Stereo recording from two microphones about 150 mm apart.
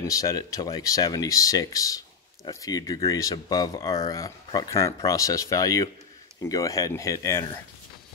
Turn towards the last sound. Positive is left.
turn(degrees=20)  # may be behind; listen again after turning